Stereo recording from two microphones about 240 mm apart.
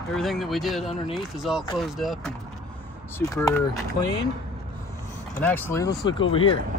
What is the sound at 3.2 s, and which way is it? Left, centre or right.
Speech, centre.